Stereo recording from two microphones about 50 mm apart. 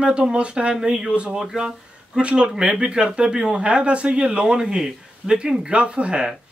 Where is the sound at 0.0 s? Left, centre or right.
Centre.